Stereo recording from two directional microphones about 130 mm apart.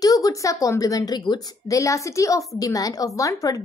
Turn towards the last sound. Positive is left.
turn(degrees=25)  # may be behind; listen again after turning